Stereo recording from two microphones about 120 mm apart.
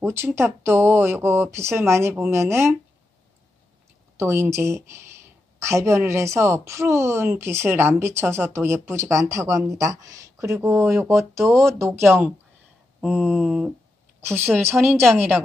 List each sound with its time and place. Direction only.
0.0 s a woman's voice: 20° right (ahead or behind)
4.2 s a woman's voice: 20° right (ahead or behind)
13.0 s a sound: centre (ahead or behind)
14.2 s a woman's voice: 20° right (ahead or behind)